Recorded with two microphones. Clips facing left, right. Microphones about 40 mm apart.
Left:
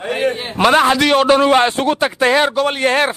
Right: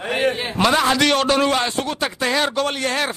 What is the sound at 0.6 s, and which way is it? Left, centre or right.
Speech, left.